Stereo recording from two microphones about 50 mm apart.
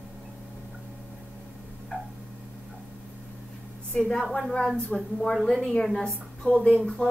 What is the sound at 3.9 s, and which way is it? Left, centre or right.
A woman's voice, centre.